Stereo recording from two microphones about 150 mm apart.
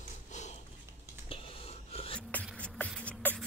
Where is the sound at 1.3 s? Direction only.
40° left (ahead or behind).